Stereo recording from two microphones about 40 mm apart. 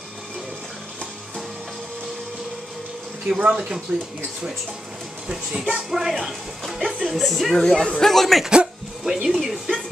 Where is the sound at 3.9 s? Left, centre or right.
Right.